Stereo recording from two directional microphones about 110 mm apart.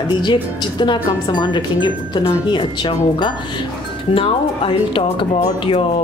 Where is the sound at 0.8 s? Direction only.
45° left (ahead or behind).